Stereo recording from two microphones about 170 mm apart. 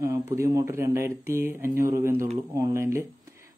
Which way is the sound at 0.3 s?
20° right (ahead or behind).